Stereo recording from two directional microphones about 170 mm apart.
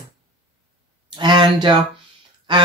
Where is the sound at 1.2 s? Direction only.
25° right (ahead or behind).